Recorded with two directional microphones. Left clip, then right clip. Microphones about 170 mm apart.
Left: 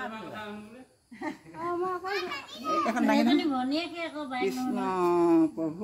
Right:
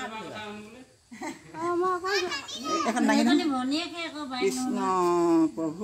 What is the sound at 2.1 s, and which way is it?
Speech, 20° left (ahead or behind).